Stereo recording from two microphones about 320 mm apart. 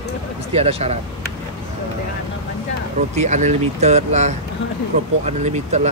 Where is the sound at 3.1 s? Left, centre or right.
Right.